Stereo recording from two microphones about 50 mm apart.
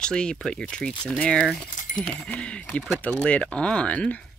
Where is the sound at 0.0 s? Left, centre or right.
Centre.